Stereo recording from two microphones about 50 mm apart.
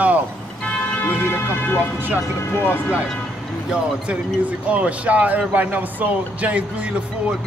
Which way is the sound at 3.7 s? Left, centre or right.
Right.